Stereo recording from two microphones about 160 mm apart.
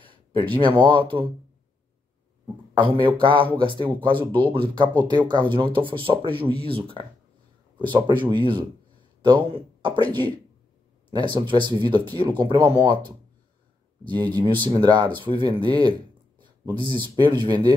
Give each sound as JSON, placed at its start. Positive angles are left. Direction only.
{"t": 0.0, "sound": "speech", "side_deg": -30}
{"t": 2.7, "sound": "speech", "side_deg": -30}
{"t": 11.1, "sound": "speech", "side_deg": -30}